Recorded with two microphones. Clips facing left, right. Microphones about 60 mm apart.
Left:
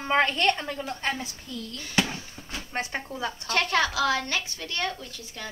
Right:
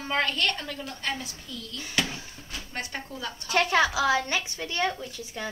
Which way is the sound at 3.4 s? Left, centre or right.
Centre.